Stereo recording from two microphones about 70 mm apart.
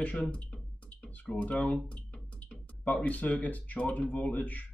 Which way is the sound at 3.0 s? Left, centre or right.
Left.